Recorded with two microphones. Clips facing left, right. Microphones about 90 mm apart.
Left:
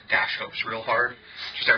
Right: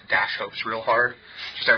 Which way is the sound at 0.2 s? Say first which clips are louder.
Right 2 dB; 20° right (ahead or behind).